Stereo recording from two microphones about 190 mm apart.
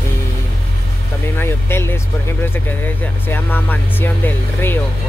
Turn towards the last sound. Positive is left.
turn(degrees=10)  # may be behind; listen again after turning